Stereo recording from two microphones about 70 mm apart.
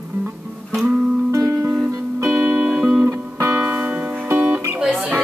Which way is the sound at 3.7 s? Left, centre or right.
Right.